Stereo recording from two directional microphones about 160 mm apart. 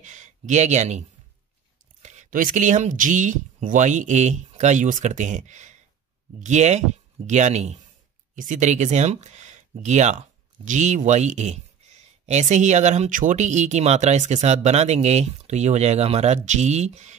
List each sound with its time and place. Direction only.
0.0 s speech: 50° right (ahead or behind)